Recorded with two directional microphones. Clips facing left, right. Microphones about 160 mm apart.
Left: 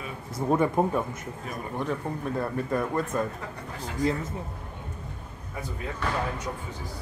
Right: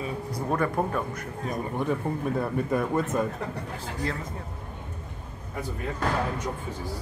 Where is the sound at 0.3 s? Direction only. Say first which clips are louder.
Left 4 dB; 20° left (ahead or behind).